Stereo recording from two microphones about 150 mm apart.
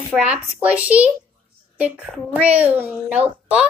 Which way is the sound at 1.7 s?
10° right (ahead or behind).